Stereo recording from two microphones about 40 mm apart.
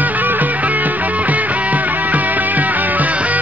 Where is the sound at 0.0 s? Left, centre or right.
Right.